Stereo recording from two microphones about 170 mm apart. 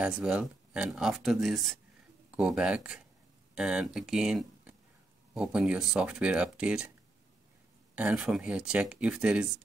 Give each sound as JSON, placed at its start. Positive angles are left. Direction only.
{"t": 0.0, "sound": "speech", "side_deg": -5}
{"t": 7.9, "sound": "speech", "side_deg": -10}